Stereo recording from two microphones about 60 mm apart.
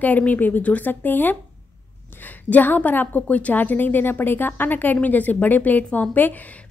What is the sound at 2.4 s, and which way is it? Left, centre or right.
A woman's voice, left.